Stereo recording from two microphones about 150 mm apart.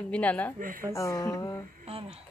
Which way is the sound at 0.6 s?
65° right (ahead or behind).